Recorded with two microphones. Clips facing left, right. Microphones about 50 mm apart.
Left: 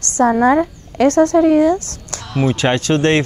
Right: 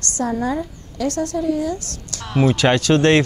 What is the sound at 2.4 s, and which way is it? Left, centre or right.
Speech, left.